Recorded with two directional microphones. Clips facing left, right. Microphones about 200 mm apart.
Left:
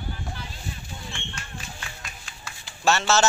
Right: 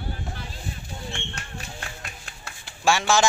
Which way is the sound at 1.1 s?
65° right (ahead or behind).